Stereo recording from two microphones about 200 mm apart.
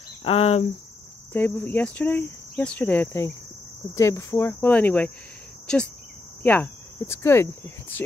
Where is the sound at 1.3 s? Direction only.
10° left (ahead or behind).